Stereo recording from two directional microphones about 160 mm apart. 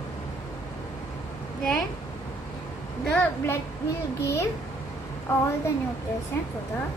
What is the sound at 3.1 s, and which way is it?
A woman's voice, 10° left (ahead or behind).